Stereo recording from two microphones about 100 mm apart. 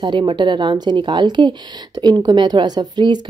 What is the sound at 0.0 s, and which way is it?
A woman's voice, 50° right (ahead or behind).